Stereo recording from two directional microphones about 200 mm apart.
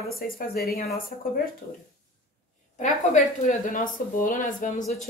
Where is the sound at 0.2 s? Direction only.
45° left (ahead or behind).